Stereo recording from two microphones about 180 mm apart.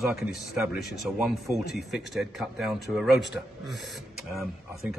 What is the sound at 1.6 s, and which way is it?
Speech, 60° left (ahead or behind).